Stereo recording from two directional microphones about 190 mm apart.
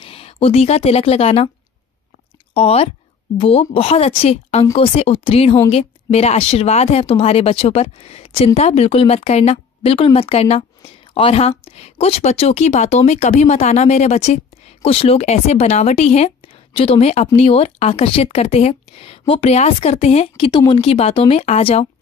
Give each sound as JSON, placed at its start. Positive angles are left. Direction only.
{"t": 0.0, "sound": "a woman's voice", "side_deg": 30}
{"t": 2.5, "sound": "speech", "side_deg": 30}